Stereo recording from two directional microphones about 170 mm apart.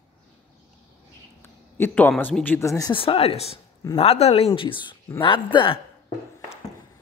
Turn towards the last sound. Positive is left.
turn(degrees=30)  # may be behind; listen again after turning